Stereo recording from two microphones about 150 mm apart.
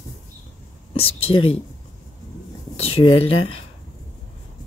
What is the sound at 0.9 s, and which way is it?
Speech, 40° left (ahead or behind).